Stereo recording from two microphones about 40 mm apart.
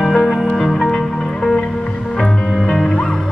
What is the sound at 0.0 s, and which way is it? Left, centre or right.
Music, centre.